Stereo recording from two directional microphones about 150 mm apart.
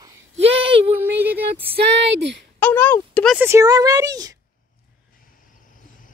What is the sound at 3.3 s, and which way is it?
Speech, 20° right (ahead or behind).